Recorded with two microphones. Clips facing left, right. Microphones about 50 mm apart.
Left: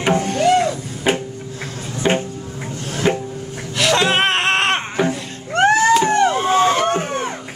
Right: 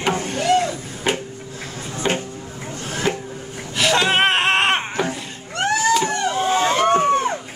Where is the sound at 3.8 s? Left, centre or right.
Centre.